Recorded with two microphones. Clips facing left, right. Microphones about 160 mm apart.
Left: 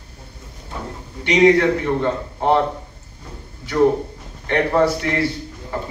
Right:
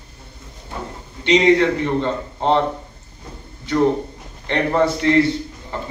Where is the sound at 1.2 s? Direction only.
20° right (ahead or behind).